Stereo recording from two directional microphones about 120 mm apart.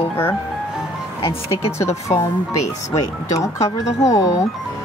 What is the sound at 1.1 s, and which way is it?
Speech, 50° left (ahead or behind).